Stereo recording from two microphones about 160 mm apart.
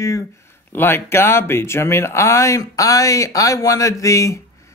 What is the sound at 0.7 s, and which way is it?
Speech, 15° left (ahead or behind).